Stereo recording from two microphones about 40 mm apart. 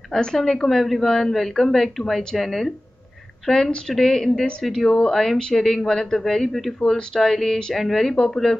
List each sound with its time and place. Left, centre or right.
0.1 s a woman's voice: centre
5.1 s a woman's voice: centre